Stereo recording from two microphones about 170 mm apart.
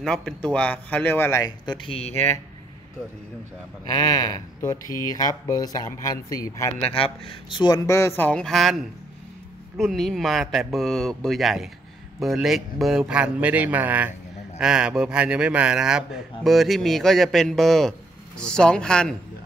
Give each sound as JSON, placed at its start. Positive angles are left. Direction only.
{"t": 0.0, "sound": "speech", "side_deg": 5}
{"t": 1.9, "sound": "speech", "side_deg": 35}
{"t": 2.1, "sound": "speech", "side_deg": 15}
{"t": 3.8, "sound": "speech", "side_deg": 20}
{"t": 7.0, "sound": "speech", "side_deg": 30}
{"t": 8.2, "sound": "a man's voice", "side_deg": 5}
{"t": 9.8, "sound": "a man's voice", "side_deg": 0}